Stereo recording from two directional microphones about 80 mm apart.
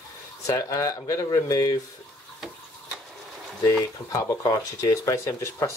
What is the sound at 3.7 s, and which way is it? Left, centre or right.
Speech, left.